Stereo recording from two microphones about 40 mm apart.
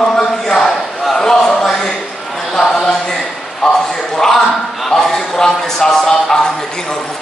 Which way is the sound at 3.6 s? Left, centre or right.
Centre.